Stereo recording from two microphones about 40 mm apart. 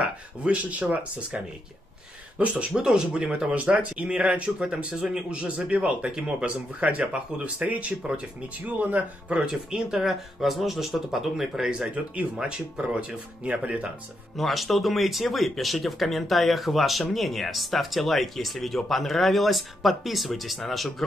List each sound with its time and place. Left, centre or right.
0.0 s speech: right
2.4 s speech: right
2.7 s speech: centre
3.5 s speech: right
6.8 s speech: right
9.3 s speech: right
10.0 s speech: centre
11.9 s speech: right
12.4 s speech: right
14.3 s speech: centre